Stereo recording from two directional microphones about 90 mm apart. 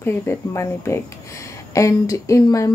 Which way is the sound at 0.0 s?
30° left (ahead or behind).